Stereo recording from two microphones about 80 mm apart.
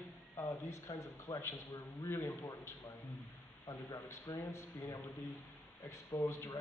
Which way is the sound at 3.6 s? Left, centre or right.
Left.